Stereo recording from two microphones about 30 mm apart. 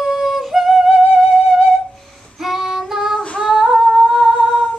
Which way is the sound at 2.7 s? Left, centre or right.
Centre.